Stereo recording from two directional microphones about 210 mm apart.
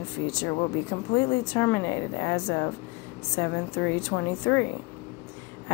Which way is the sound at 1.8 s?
60° left (ahead or behind).